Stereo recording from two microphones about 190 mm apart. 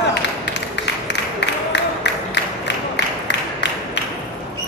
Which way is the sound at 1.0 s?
65° left (ahead or behind).